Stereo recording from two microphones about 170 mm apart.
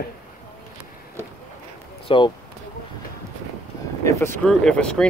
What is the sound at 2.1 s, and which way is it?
Speech, 30° left (ahead or behind).